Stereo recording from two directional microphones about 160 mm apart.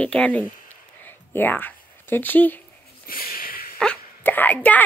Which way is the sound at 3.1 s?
65° left (ahead or behind).